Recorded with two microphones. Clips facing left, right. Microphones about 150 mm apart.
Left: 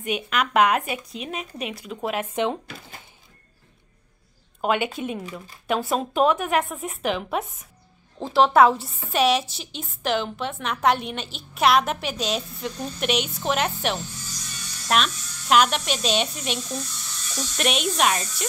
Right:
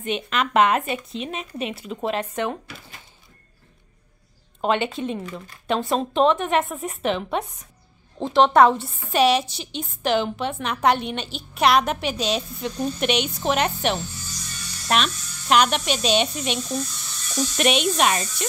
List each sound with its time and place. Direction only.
0.0 s a woman's voice: 5° left (ahead or behind)
2.3 s speech: 20° left (ahead or behind)
4.6 s a woman's voice: 5° left (ahead or behind)